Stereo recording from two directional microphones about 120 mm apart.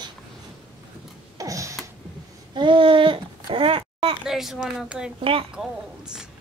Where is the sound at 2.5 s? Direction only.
40° right (ahead or behind).